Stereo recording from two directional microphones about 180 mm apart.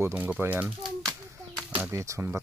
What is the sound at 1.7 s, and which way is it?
Speech, 15° right (ahead or behind).